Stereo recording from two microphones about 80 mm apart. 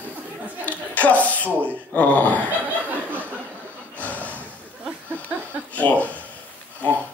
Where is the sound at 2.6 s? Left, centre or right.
Right.